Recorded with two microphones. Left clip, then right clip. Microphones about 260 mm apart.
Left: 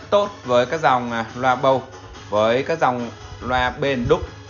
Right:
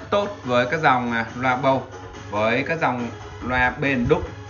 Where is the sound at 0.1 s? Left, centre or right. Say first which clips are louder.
Left 4 dB; centre.